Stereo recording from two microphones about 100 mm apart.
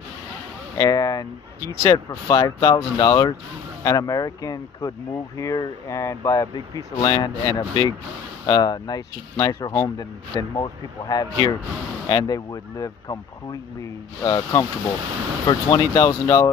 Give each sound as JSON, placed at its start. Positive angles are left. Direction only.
{"t": 0.7, "sound": "speech", "side_deg": 35}